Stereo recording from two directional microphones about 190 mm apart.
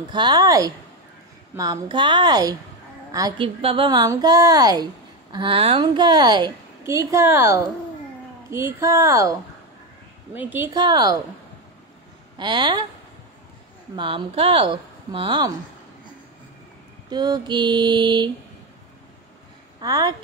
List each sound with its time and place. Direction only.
0.1 s a woman's voice: 20° right (ahead or behind)
10.7 s a woman's voice: 20° right (ahead or behind)
12.4 s a woman's voice: 25° right (ahead or behind)
13.9 s a woman's voice: 25° right (ahead or behind)
17.1 s a woman's voice: 20° right (ahead or behind)
19.8 s a woman's voice: 20° right (ahead or behind)